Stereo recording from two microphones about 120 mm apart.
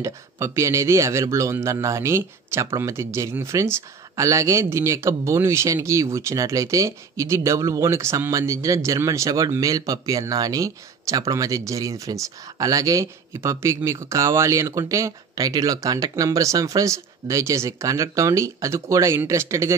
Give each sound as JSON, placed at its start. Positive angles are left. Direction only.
{"t": 0.0, "sound": "speech", "side_deg": -25}